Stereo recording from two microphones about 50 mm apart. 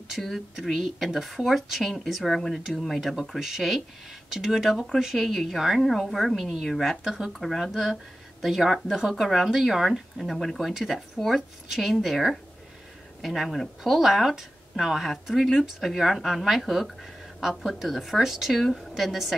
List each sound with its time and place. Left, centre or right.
0.2 s speech: centre